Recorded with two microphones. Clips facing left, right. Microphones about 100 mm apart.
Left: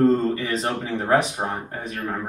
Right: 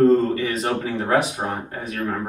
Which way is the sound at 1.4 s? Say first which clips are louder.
Right 1 dB; 15° left (ahead or behind).